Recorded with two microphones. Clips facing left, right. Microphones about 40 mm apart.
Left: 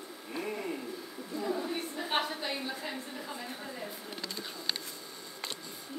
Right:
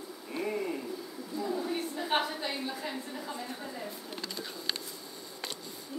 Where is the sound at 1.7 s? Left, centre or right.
Centre.